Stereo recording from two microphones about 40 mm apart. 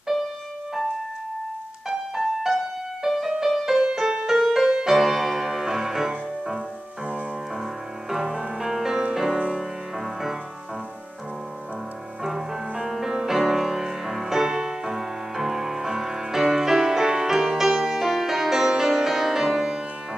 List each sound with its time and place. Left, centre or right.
1.9 s music: centre
8.1 s music: centre
12.2 s music: centre